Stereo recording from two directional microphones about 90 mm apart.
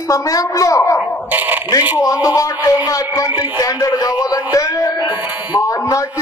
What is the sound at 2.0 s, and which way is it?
A man's voice, 40° left (ahead or behind).